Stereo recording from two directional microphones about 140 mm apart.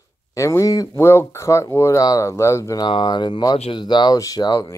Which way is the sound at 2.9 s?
35° left (ahead or behind).